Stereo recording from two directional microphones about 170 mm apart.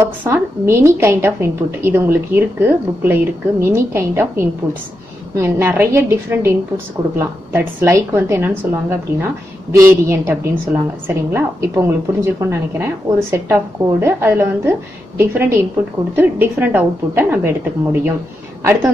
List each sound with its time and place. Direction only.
0.2 s a woman's voice: 15° right (ahead or behind)